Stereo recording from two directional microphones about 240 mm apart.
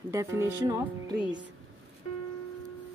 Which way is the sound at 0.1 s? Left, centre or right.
Centre.